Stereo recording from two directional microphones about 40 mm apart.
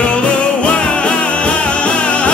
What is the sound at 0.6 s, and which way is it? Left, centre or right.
Music, left.